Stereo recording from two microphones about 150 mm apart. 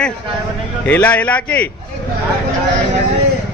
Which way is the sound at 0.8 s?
10° left (ahead or behind).